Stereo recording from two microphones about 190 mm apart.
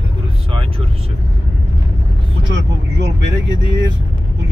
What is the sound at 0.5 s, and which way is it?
Vehicle, 30° right (ahead or behind).